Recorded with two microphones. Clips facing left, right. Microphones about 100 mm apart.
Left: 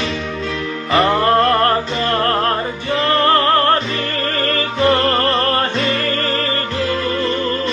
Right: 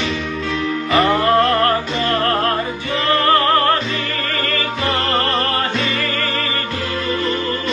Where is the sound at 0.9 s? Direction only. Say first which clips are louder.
Left 1 dB; 35° left (ahead or behind).